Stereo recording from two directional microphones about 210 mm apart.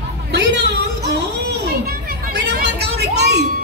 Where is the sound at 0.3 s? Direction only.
55° right (ahead or behind).